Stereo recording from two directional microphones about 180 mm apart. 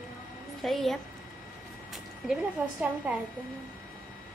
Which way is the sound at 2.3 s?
10° right (ahead or behind).